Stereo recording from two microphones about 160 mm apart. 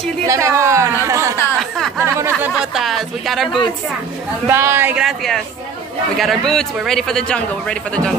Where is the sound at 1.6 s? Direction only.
Centre (ahead or behind).